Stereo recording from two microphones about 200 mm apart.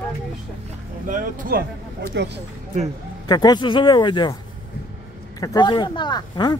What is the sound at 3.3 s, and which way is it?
Speech, 20° left (ahead or behind).